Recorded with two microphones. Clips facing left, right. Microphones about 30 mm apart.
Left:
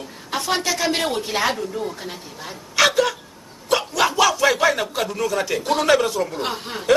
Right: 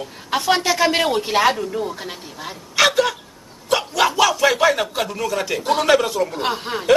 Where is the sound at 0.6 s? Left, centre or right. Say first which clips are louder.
Right 5 dB; right.